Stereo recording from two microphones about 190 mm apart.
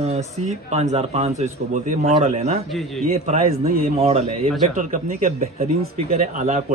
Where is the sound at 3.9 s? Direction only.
35° right (ahead or behind).